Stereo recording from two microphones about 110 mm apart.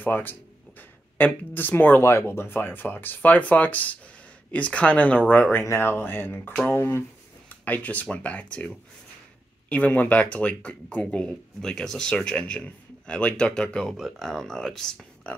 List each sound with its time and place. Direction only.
0.0 s speech: 15° left (ahead or behind)
5.6 s speech: 20° left (ahead or behind); by 15.3 s 5° left (ahead or behind)